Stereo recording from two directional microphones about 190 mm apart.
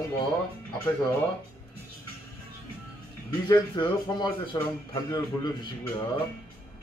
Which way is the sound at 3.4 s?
25° left (ahead or behind).